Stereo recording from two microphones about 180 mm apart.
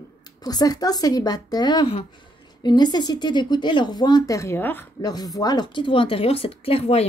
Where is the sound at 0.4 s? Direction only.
20° left (ahead or behind).